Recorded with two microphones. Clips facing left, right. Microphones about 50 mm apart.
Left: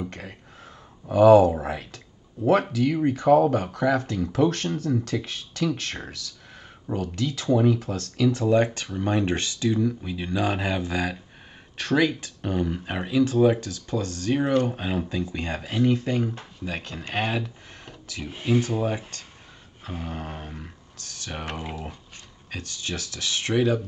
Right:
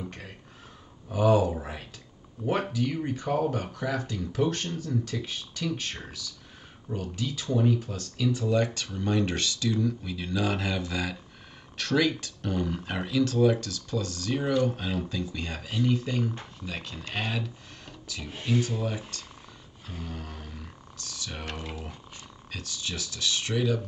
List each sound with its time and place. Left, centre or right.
1.0 s speech: left
2.4 s speech: left
3.2 s speech: left
7.5 s speech: left
7.8 s speech: left
8.5 s speech: left
14.8 s speech: left
18.2 s speech: centre
18.6 s speech: left
22.5 s speech: left